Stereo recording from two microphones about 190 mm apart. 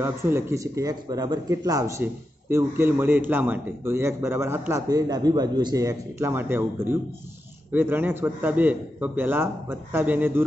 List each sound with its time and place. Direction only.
0.0 s a man's voice: 10° right (ahead or behind)